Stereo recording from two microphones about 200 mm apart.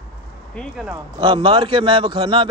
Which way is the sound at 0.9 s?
20° right (ahead or behind).